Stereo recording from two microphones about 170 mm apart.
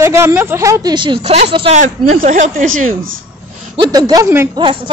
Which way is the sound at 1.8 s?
45° right (ahead or behind).